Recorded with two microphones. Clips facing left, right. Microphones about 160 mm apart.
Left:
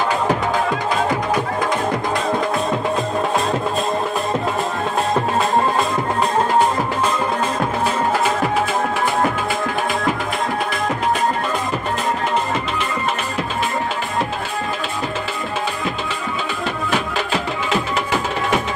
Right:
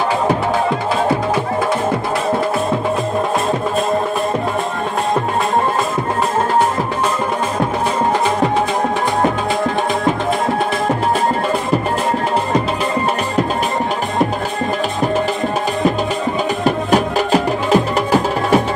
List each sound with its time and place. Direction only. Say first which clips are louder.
16.6 s music: right 7 dB; 40° right (ahead or behind)